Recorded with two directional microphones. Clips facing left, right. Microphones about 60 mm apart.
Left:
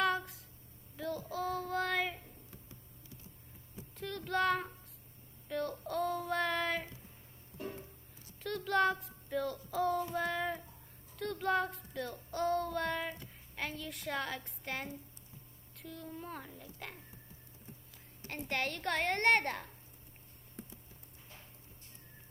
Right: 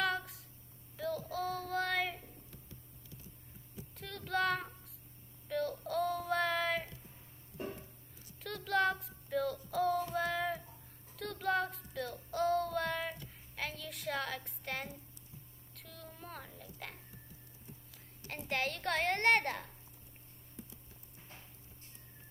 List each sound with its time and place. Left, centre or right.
0.0 s a sound: centre
0.9 s child singing: centre
3.9 s a sound: centre
5.5 s child singing: centre
7.6 s music: right
8.4 s child singing: centre
13.6 s a woman's voice: centre
18.3 s a woman's voice: centre